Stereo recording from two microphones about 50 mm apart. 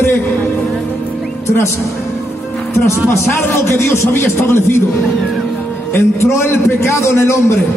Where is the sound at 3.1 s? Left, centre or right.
Left.